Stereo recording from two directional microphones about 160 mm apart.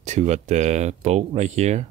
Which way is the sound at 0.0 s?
45° right (ahead or behind).